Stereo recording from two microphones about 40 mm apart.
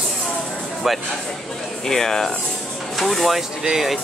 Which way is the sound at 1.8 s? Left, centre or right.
Centre.